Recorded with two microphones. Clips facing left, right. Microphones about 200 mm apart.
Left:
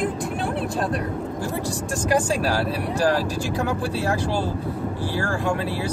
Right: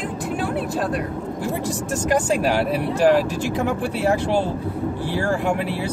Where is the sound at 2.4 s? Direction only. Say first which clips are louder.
Right 3 dB; 20° right (ahead or behind).